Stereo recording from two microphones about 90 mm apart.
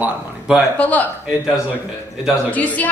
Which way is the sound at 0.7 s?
15° left (ahead or behind).